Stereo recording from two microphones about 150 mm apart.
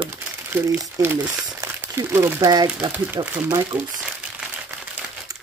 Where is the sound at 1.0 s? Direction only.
10° right (ahead or behind).